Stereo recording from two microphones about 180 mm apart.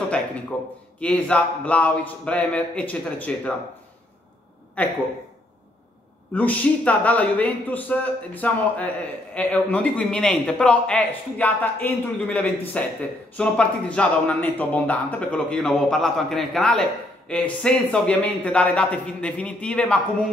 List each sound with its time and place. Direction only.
0.5 s speech: 5° left (ahead or behind)
4.8 s speech: 10° left (ahead or behind)
6.3 s speech: 10° left (ahead or behind)